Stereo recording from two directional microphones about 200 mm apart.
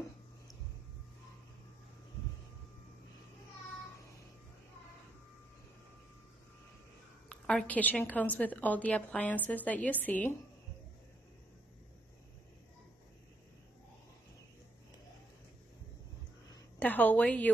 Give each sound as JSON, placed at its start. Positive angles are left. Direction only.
{"t": 7.2, "sound": "a woman's voice", "side_deg": 5}
{"t": 16.8, "sound": "a woman's voice", "side_deg": 10}